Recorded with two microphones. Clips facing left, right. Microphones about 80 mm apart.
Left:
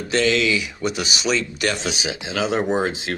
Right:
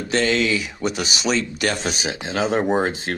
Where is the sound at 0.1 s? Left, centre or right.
Right.